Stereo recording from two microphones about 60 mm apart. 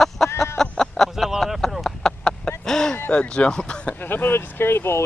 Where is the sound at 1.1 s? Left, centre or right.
Centre.